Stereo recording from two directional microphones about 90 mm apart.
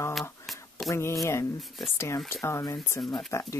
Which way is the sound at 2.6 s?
35° left (ahead or behind).